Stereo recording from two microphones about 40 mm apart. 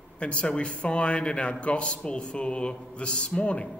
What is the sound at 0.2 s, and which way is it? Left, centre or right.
A man's voice, left.